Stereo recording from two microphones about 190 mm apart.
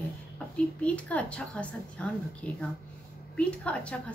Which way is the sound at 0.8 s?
5° left (ahead or behind).